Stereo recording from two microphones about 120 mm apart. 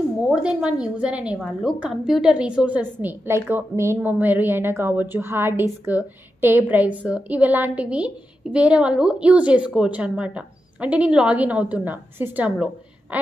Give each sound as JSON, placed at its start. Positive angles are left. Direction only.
{"t": 0.3, "sound": "a woman's voice", "side_deg": -10}